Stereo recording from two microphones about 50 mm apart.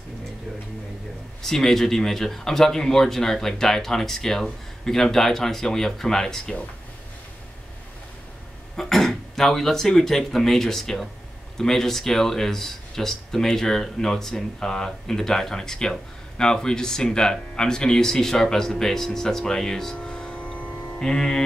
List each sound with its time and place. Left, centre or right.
1.4 s speech: centre
8.7 s speech: centre
20.1 s a sound: left
21.0 s speech: centre